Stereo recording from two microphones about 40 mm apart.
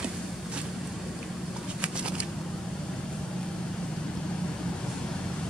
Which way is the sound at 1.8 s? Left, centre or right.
Right.